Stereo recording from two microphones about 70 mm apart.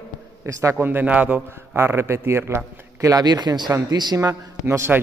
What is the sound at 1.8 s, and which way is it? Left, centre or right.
A man's voice, right.